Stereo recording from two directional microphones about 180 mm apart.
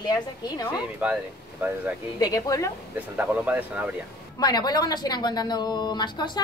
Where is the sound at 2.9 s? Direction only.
5° right (ahead or behind).